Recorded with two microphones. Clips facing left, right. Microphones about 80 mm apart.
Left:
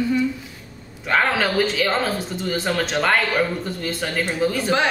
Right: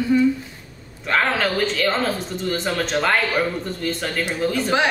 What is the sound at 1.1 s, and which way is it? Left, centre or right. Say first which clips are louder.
Speech: left 1 dB; centre.